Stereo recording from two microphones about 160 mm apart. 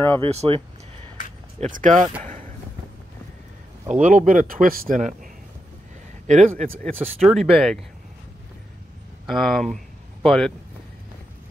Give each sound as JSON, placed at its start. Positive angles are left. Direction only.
{"t": 0.2, "sound": "speech", "side_deg": -40}
{"t": 1.6, "sound": "speech", "side_deg": -50}
{"t": 3.9, "sound": "speech", "side_deg": -50}
{"t": 6.6, "sound": "speech", "side_deg": 0}
{"t": 9.2, "sound": "speech", "side_deg": 0}